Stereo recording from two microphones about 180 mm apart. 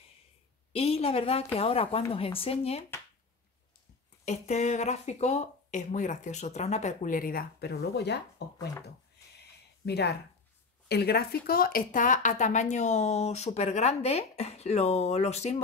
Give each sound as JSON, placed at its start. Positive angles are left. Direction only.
{"t": 0.7, "sound": "a woman's voice", "side_deg": 35}
{"t": 4.2, "sound": "speech", "side_deg": 40}
{"t": 9.8, "sound": "speech", "side_deg": 65}